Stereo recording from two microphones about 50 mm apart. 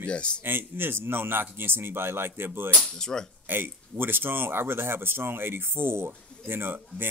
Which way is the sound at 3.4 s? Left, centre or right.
Right.